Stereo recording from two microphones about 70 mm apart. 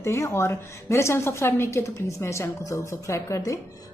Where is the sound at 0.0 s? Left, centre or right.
Left.